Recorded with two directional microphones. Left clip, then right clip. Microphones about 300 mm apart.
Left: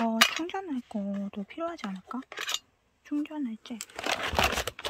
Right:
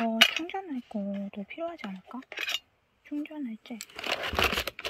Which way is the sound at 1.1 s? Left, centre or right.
Centre.